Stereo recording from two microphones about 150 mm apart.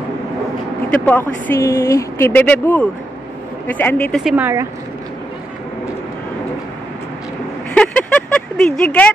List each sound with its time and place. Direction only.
1.0 s speech: 10° left (ahead or behind)
4.2 s speech: centre (ahead or behind)
7.7 s a sound: 10° left (ahead or behind)